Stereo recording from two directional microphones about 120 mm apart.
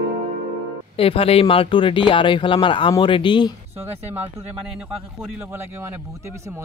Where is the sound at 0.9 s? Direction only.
50° left (ahead or behind).